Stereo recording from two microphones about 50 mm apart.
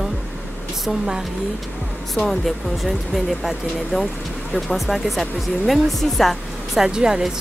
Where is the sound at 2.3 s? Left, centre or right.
Centre.